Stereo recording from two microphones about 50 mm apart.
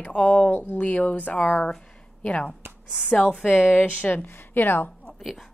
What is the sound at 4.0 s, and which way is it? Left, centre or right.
Speech, left.